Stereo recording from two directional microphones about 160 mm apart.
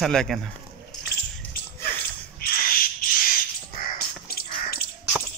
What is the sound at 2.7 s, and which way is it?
Crow, 65° left (ahead or behind).